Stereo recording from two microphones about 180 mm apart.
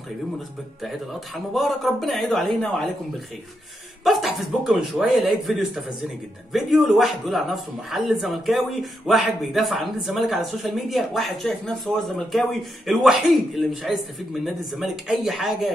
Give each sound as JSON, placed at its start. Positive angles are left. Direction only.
{"t": 1.5, "sound": "a man's voice", "side_deg": 0}
{"t": 4.0, "sound": "a man's voice", "side_deg": 0}